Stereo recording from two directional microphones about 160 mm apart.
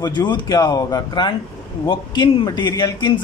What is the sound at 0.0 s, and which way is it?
A man's voice, 25° left (ahead or behind).